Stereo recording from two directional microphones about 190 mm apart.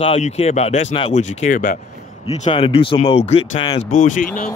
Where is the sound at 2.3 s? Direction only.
30° left (ahead or behind).